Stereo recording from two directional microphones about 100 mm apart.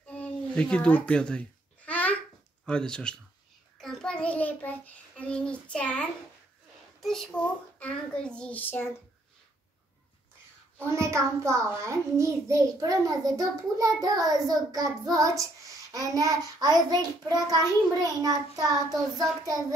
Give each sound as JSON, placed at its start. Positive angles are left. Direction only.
{"t": 0.0, "sound": "a sound", "side_deg": 10}
{"t": 2.6, "sound": "a child's voice", "side_deg": 10}
{"t": 3.7, "sound": "child singing", "side_deg": 5}
{"t": 7.0, "sound": "a child's voice", "side_deg": 5}
{"t": 10.8, "sound": "a child's voice", "side_deg": -30}